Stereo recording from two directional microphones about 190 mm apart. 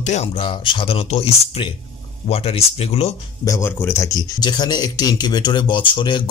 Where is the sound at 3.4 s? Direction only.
15° left (ahead or behind).